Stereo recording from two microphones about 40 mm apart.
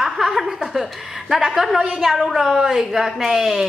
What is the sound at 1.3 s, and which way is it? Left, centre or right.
A woman's voice, centre.